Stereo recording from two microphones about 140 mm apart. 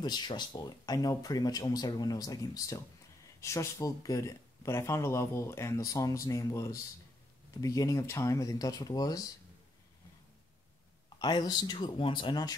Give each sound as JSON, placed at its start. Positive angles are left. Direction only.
{"t": 0.0, "sound": "speech", "side_deg": 30}
{"t": 11.1, "sound": "speech", "side_deg": 30}